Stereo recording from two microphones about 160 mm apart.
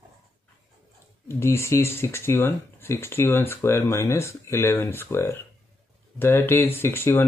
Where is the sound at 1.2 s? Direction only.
15° left (ahead or behind).